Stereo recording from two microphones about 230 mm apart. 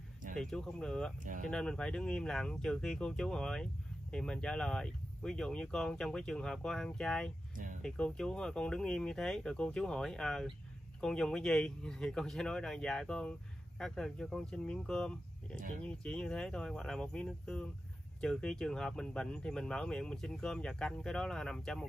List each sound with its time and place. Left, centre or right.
0.4 s speech: centre
1.2 s speech: right
1.5 s speech: centre
7.5 s a sound: right
7.8 s speech: centre